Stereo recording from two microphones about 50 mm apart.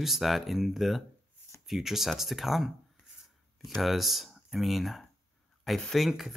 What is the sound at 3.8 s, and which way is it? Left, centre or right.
Speech, centre.